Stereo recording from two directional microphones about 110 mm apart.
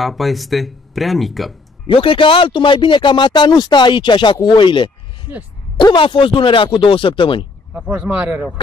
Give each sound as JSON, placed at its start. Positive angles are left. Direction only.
{"t": 0.0, "sound": "speech", "side_deg": 0}
{"t": 1.9, "sound": "a man's voice", "side_deg": 55}
{"t": 7.7, "sound": "speech", "side_deg": -10}